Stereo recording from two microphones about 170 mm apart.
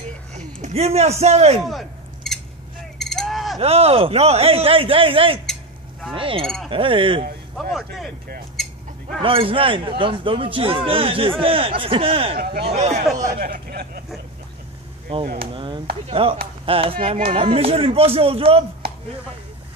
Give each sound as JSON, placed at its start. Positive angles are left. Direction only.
{"t": 0.6, "sound": "speech", "side_deg": -40}
{"t": 1.6, "sound": "scissors", "side_deg": 0}
{"t": 3.0, "sound": "a sound", "side_deg": 5}
{"t": 3.5, "sound": "speech", "side_deg": -35}
{"t": 7.5, "sound": "speech", "side_deg": 0}
{"t": 8.6, "sound": "a sound", "side_deg": 0}
{"t": 9.2, "sound": "speech", "side_deg": -30}
{"t": 13.4, "sound": "speech", "side_deg": -60}
{"t": 15.5, "sound": "speech", "side_deg": -30}